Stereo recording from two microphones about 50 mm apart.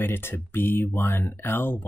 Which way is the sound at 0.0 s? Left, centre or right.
Left.